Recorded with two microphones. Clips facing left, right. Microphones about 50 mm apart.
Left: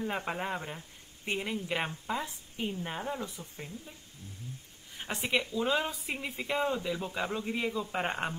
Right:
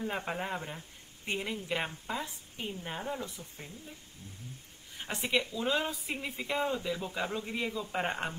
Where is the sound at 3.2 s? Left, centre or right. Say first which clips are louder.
Left 2 dB; left.